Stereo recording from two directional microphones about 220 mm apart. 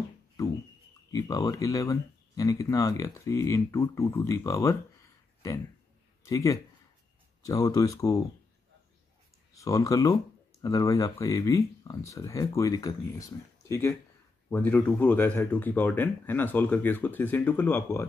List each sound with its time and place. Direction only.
1.1 s speech: 15° left (ahead or behind)
6.2 s speech: 15° left (ahead or behind)
9.5 s speech: 15° left (ahead or behind)